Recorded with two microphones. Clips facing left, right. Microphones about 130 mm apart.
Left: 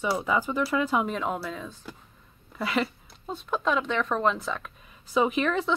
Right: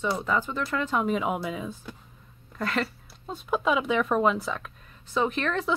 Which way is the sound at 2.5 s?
5° left (ahead or behind).